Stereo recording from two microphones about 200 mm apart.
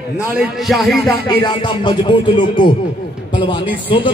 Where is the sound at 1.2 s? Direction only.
20° left (ahead or behind).